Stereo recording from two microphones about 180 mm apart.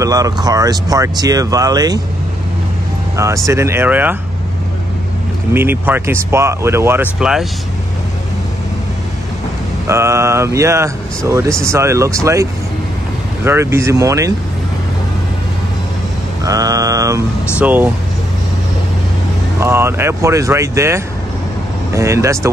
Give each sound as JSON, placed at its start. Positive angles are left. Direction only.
{"t": 0.0, "sound": "speech", "side_deg": -20}
{"t": 3.4, "sound": "speech", "side_deg": -15}
{"t": 5.5, "sound": "speech", "side_deg": -10}
{"t": 9.8, "sound": "speech", "side_deg": -15}
{"t": 16.4, "sound": "speech", "side_deg": -20}
{"t": 19.6, "sound": "speech", "side_deg": -15}